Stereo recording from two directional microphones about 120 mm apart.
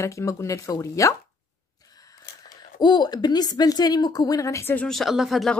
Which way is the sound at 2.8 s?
35° left (ahead or behind).